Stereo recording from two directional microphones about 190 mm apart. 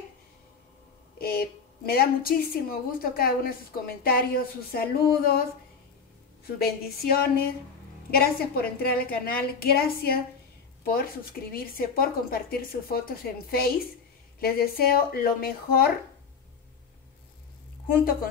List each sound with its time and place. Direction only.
1.1 s a woman's voice: 50° left (ahead or behind)
6.4 s a woman's voice: 55° left (ahead or behind)
17.8 s a woman's voice: 50° left (ahead or behind)